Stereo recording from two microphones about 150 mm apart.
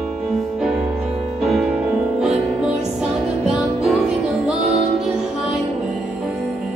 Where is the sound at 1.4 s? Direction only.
Centre (ahead or behind).